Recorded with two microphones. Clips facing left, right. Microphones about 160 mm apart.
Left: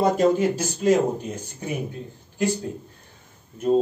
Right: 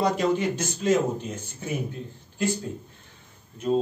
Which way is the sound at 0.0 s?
45° left (ahead or behind).